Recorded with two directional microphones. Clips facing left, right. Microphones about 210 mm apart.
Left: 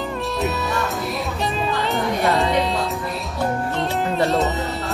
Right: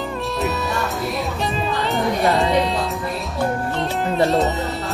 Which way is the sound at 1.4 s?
Centre (ahead or behind).